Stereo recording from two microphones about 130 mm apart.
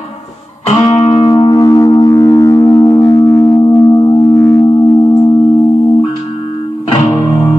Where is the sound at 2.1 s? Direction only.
20° left (ahead or behind).